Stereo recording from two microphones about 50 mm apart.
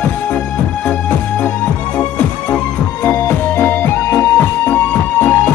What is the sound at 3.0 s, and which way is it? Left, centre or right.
Music, left.